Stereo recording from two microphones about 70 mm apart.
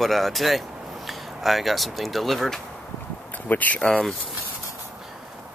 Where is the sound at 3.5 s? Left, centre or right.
Left.